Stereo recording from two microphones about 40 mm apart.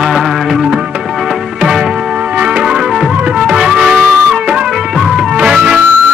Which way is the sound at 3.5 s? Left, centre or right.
Centre.